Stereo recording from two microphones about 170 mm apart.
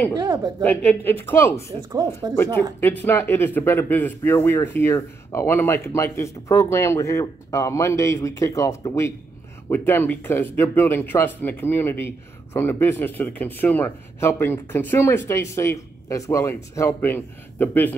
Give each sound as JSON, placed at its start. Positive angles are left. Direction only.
{"t": 0.1, "sound": "speech", "side_deg": -25}
{"t": 0.6, "sound": "speech", "side_deg": 10}
{"t": 1.9, "sound": "speech", "side_deg": -25}
{"t": 2.8, "sound": "speech", "side_deg": 10}